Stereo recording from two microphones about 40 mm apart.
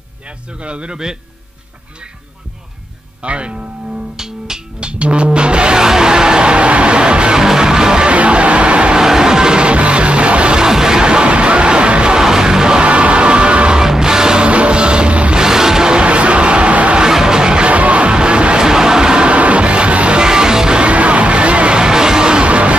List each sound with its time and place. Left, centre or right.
0.6 s a man's voice: right
3.2 s speech: right
4.7 s music: right
7.3 s music: centre
8.1 s music: right
9.0 s music: centre
10.6 s music: centre
12.2 s music: centre
12.8 s music: right
13.7 s music: centre
15.3 s music: centre; by 17.0 s right
17.0 s music: centre
19.3 s music: right
20.2 s music: centre; by 22.8 s right